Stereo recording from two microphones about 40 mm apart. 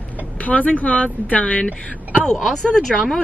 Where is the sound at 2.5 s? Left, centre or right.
Centre.